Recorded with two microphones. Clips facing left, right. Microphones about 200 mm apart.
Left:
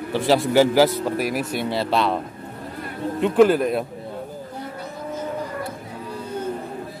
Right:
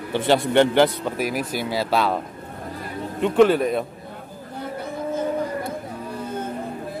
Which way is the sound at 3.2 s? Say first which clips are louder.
Even; 5° left (ahead or behind).